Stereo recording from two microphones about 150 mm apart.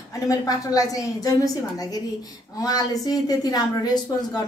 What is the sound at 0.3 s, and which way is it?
A woman's voice, 25° left (ahead or behind).